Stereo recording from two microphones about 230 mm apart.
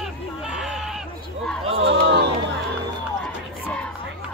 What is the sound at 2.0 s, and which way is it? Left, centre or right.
Crowd, right.